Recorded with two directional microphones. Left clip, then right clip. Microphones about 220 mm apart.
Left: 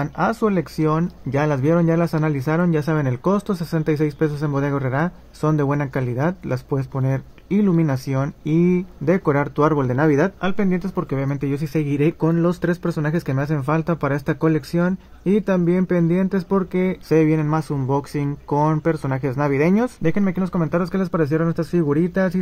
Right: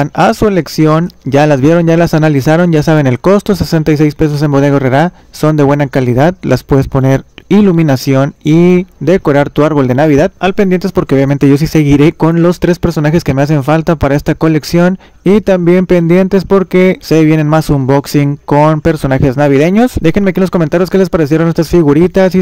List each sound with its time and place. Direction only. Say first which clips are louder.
0.0 s speech: right 12 dB; 45° right (ahead or behind)
18.5 s speech: right 12 dB; 25° right (ahead or behind)
18.8 s speech: right 11 dB; 40° right (ahead or behind)